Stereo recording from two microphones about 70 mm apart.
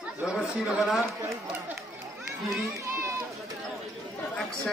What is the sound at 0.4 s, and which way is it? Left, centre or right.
Speech, centre.